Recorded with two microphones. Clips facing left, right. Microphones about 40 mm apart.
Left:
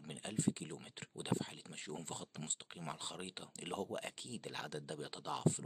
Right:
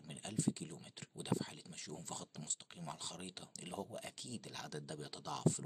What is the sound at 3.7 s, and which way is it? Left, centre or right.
Speech, left.